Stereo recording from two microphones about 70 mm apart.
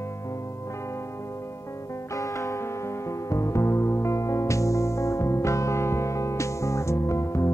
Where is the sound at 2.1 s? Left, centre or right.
Left.